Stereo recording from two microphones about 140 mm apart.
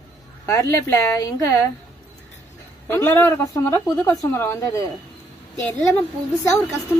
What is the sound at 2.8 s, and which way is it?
A woman's voice, 15° left (ahead or behind).